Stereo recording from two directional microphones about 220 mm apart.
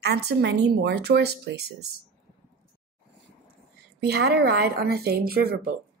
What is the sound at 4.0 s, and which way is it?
Speech, 45° right (ahead or behind).